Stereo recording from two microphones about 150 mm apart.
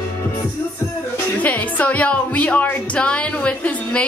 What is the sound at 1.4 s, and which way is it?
A woman's voice, 10° left (ahead or behind).